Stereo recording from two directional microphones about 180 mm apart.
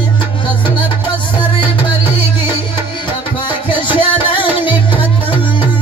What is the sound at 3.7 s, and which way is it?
Music, 30° left (ahead or behind).